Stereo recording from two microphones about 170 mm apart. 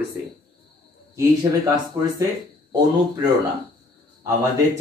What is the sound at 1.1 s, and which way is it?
Speech, 20° right (ahead or behind).